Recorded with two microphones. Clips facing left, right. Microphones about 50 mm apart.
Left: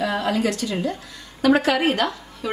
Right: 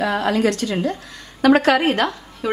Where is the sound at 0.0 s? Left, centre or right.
Right.